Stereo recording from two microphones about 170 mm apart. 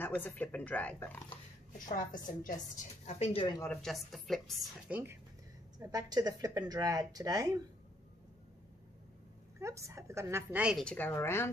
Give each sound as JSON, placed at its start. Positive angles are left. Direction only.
{"t": 0.0, "sound": "speech", "side_deg": 10}
{"t": 1.9, "sound": "a woman's voice", "side_deg": 50}
{"t": 3.1, "sound": "speech", "side_deg": 40}
{"t": 3.4, "sound": "speech", "side_deg": 20}
{"t": 3.7, "sound": "speech", "side_deg": 0}
{"t": 5.8, "sound": "speech", "side_deg": -20}
{"t": 9.6, "sound": "a woman's voice", "side_deg": -15}
{"t": 10.8, "sound": "speech", "side_deg": 10}